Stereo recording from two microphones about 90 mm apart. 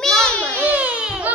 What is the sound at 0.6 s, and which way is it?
Baby cry, 15° right (ahead or behind).